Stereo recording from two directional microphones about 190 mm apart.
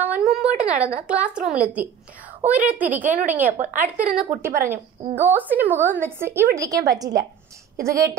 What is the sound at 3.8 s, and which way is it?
A woman's voice, 5° right (ahead or behind).